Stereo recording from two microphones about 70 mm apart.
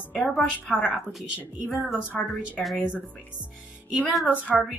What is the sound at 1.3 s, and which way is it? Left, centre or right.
Speech, right.